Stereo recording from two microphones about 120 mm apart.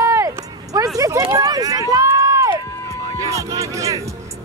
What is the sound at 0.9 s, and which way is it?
Run, 25° right (ahead or behind).